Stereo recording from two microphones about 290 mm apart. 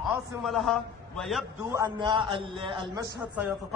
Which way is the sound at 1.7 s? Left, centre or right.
Centre.